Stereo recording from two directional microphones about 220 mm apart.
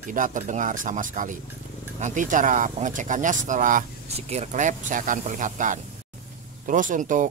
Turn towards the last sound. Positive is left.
turn(degrees=-35)  # may be behind; listen again after turning